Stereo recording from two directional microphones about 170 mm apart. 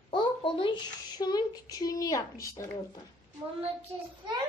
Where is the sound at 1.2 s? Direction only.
25° left (ahead or behind).